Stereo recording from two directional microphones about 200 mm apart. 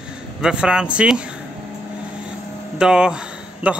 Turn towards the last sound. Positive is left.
turn(degrees=-5)  # may be behind; listen again after turning